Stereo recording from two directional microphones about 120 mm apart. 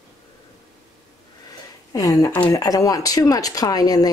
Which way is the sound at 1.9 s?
30° left (ahead or behind).